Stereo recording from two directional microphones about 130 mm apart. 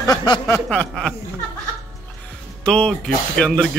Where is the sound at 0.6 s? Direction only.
5° left (ahead or behind).